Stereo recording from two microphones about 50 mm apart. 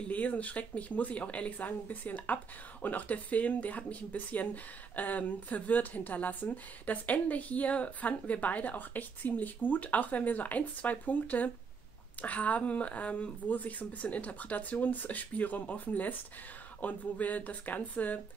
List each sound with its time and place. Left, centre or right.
0.1 s speech: left